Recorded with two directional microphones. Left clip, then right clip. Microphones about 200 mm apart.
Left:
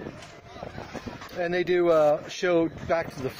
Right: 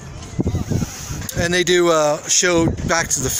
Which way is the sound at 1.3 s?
15° right (ahead or behind).